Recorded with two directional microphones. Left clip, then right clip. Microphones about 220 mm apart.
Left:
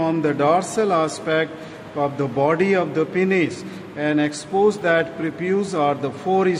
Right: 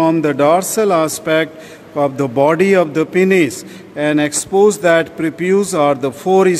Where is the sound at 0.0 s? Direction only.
50° right (ahead or behind).